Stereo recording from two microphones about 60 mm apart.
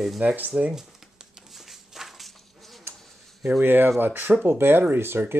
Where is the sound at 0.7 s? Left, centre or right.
Centre.